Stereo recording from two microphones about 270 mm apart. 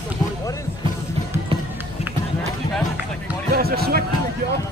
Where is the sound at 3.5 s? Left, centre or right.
Right.